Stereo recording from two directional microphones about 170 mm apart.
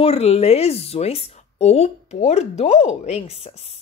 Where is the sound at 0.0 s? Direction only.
35° left (ahead or behind).